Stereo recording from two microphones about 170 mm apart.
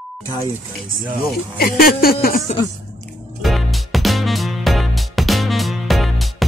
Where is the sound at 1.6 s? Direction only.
60° left (ahead or behind).